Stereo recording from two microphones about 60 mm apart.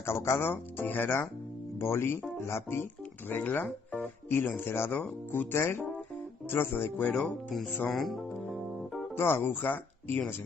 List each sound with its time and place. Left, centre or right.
0.0 s speech: left
1.8 s speech: left
7.9 s music: centre
9.1 s speech: left